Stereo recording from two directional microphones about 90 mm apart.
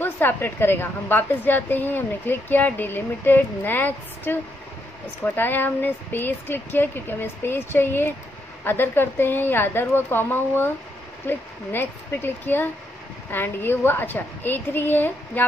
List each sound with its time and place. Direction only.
0.0 s a woman's voice: 25° left (ahead or behind)